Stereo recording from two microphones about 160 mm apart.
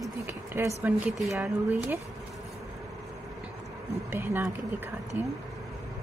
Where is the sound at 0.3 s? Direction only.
15° right (ahead or behind).